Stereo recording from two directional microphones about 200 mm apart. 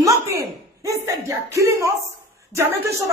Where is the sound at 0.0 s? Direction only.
15° right (ahead or behind).